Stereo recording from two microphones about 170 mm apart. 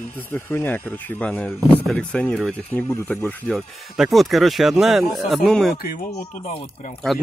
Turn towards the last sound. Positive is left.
turn(degrees=45)  # may be behind; listen again after turning